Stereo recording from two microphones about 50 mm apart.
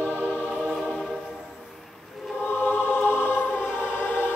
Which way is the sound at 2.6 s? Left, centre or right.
Left.